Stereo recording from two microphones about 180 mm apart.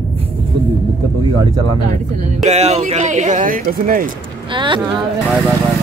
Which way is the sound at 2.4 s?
35° right (ahead or behind).